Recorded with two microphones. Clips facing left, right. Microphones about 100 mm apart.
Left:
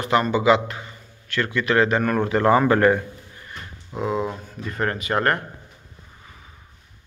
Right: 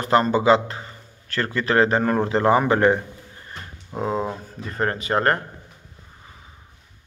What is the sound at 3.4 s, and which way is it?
Speech, 35° right (ahead or behind).